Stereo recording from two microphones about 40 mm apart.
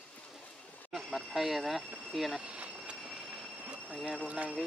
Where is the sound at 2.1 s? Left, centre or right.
Centre.